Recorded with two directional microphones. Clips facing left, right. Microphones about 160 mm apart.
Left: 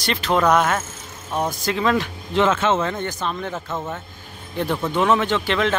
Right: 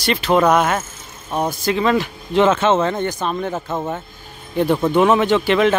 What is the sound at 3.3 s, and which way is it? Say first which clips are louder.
Speech: right 5 dB; 25° right (ahead or behind).